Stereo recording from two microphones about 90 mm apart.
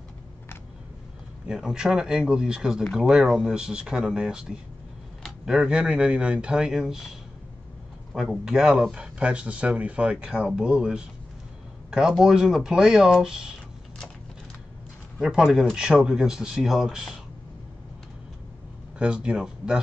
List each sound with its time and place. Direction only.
1.5 s speech: 5° right (ahead or behind)
8.1 s speech: centre (ahead or behind)
15.1 s speech: 5° right (ahead or behind)
18.9 s speech: 10° right (ahead or behind)